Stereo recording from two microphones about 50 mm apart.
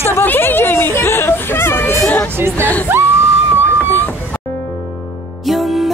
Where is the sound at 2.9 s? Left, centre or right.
Right.